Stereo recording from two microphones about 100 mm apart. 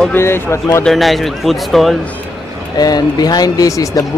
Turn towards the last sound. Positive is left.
turn(degrees=35)  # may be behind; listen again after turning